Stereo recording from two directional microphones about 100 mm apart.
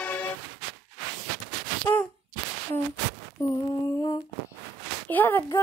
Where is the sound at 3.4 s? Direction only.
35° left (ahead or behind).